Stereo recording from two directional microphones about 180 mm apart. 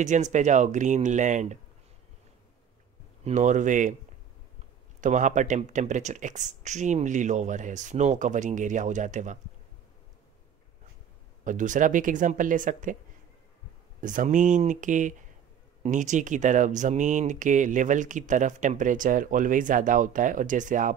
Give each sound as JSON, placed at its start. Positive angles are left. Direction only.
{"t": 0.0, "sound": "speech", "side_deg": -40}
{"t": 3.3, "sound": "speech", "side_deg": -45}
{"t": 5.0, "sound": "speech", "side_deg": -45}
{"t": 11.4, "sound": "speech", "side_deg": -45}
{"t": 14.0, "sound": "speech", "side_deg": -45}